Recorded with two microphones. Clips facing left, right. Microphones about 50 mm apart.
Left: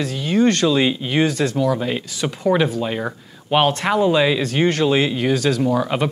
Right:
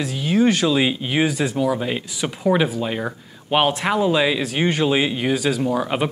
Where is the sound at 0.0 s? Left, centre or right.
Centre.